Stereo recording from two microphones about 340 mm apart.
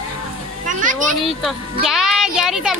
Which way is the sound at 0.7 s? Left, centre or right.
Right.